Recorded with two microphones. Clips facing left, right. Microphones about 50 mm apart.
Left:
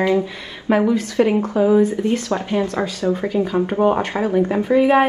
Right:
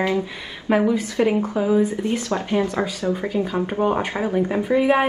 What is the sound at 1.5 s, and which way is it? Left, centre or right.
Speech, centre.